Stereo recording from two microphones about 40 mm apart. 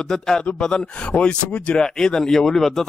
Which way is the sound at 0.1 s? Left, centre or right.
Centre.